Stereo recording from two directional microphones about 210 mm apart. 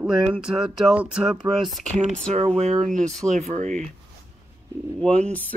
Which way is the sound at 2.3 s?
30° right (ahead or behind).